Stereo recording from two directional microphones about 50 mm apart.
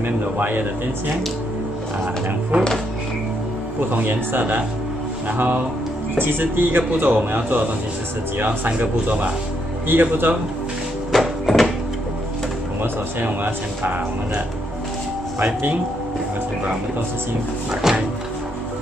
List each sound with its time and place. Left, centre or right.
0.4 s speech: right
2.5 s speech: right
3.9 s speech: right
6.1 s speech: right
9.8 s speech: right
11.1 s a sound: centre
12.8 s speech: right
15.3 s speech: right
17.8 s music: centre